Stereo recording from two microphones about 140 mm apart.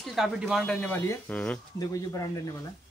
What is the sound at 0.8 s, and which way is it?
Speech, 15° left (ahead or behind).